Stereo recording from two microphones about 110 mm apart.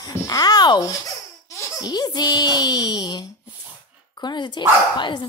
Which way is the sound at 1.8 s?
35° left (ahead or behind).